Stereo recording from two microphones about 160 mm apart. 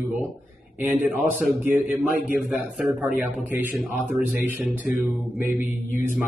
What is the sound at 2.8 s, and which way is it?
Speech, 5° right (ahead or behind).